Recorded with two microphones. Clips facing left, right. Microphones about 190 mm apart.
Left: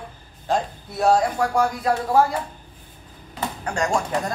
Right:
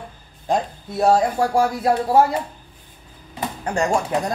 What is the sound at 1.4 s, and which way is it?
Speech, 25° right (ahead or behind).